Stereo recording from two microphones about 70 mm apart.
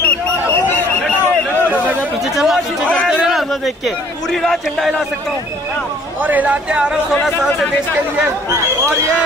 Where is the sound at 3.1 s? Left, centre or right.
Centre.